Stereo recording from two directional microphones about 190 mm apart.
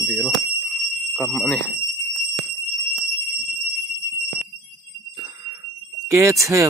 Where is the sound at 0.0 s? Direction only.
5° left (ahead or behind).